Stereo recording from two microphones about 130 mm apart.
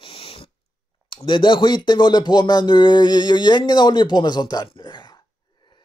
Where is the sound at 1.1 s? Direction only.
40° left (ahead or behind).